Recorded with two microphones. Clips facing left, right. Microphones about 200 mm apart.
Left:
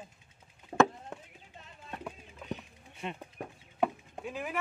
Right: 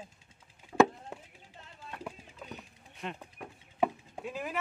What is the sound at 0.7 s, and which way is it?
Chop, 40° left (ahead or behind).